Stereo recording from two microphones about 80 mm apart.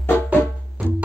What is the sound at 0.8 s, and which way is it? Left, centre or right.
Music, centre.